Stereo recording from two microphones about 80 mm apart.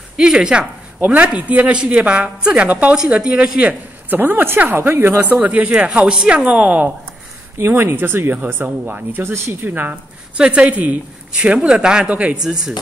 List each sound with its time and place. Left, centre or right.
0.2 s a woman's voice: centre
7.5 s speech: right
9.2 s a woman's voice: right; by 12.7 s centre